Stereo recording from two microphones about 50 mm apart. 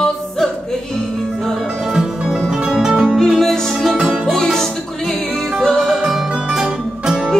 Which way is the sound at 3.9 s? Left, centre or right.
Centre.